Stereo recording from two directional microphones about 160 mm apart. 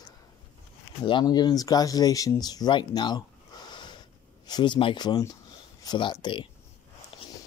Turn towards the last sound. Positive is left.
turn(degrees=30)  # may be behind; listen again after turning